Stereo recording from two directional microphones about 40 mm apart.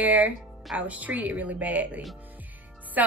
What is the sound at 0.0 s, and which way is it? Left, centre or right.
A woman's voice, right.